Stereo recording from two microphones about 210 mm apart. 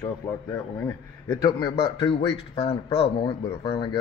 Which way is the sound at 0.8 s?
10° left (ahead or behind).